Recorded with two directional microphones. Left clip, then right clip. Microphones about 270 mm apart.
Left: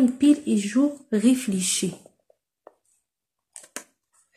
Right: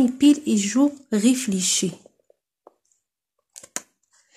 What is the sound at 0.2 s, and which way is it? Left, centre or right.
Speech, right.